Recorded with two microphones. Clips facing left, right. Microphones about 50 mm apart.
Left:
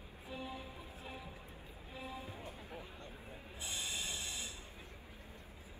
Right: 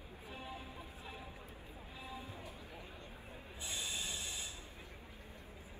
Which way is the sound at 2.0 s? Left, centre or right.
Left.